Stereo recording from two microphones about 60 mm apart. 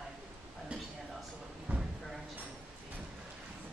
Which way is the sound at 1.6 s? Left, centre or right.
Centre.